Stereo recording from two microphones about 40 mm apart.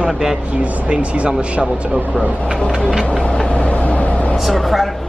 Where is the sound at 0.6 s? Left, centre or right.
Right.